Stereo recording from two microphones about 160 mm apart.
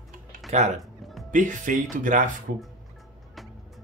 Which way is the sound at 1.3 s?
55° right (ahead or behind).